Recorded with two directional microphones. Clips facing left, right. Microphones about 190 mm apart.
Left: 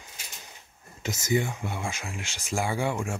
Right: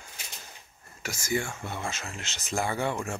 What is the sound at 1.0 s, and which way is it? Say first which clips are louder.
Speech: left 4 dB; 20° left (ahead or behind).